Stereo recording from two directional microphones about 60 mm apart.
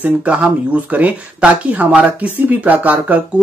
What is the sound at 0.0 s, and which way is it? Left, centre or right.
Speech, right.